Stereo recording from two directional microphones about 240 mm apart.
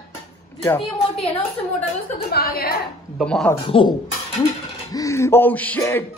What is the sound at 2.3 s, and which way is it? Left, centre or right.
Speech, left.